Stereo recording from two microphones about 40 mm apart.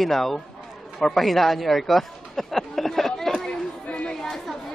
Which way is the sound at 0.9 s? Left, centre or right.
Centre.